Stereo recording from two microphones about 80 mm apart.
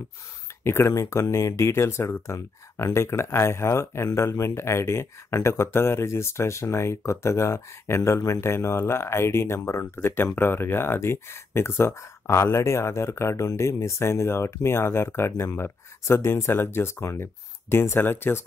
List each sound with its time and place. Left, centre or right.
0.7 s speech: left